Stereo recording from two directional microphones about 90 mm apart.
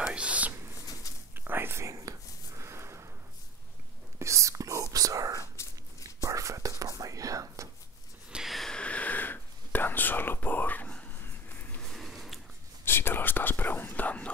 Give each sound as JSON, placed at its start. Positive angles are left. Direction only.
{"t": 0.0, "sound": "whispering", "side_deg": -10}
{"t": 4.2, "sound": "whispering", "side_deg": -35}
{"t": 8.3, "sound": "whispering", "side_deg": -5}
{"t": 11.1, "sound": "a sound", "side_deg": 20}
{"t": 11.9, "sound": "a sound", "side_deg": 0}
{"t": 12.8, "sound": "whispering", "side_deg": 25}